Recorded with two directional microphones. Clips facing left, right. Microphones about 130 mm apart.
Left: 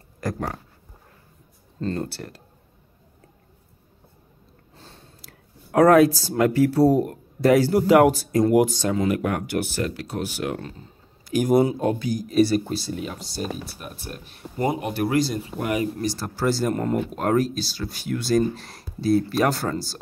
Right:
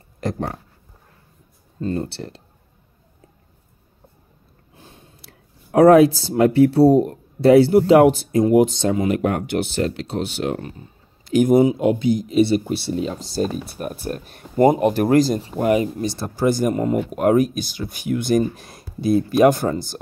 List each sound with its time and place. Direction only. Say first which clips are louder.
0.2 s speech: right 3 dB; 25° right (ahead or behind)
1.8 s speech: right 3 dB; 10° right (ahead or behind)
2.0 s speech: right 3 dB; 25° right (ahead or behind)
4.7 s a sound: right 1 dB; 15° right (ahead or behind)
5.7 s a man's voice: right 4 dB; 25° right (ahead or behind)
12.0 s speech: right 3 dB; 25° right (ahead or behind)
13.7 s speech: right 10 dB; 45° right (ahead or behind); by 20.0 s 20° right (ahead or behind)